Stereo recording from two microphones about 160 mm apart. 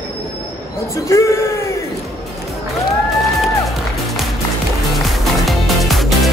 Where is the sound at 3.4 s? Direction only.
Centre (ahead or behind).